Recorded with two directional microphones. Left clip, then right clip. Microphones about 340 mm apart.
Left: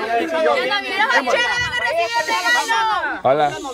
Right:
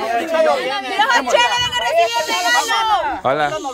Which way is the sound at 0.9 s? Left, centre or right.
Centre.